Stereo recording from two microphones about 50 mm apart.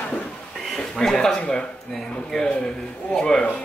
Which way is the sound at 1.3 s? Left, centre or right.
Left.